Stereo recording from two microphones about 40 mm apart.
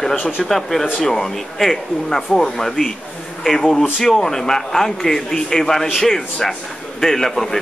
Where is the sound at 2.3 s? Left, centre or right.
Left.